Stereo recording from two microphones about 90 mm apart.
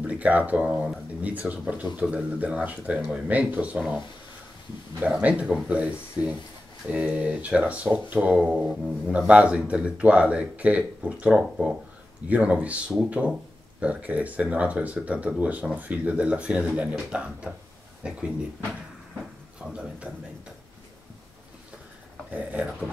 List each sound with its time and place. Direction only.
0.0 s speech: 15° right (ahead or behind)
5.2 s speech: 15° right (ahead or behind)
19.7 s speech: 15° right (ahead or behind)
22.3 s speech: 15° right (ahead or behind)